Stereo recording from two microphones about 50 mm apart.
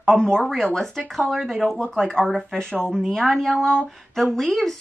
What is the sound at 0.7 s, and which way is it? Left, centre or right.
Speech, centre.